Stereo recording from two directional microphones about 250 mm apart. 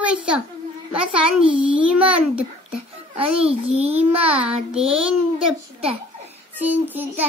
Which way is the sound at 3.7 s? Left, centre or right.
Right.